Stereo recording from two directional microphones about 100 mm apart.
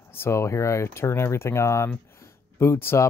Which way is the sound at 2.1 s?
25° left (ahead or behind).